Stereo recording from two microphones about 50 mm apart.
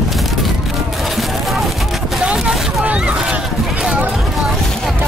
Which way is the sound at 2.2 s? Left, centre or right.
Centre.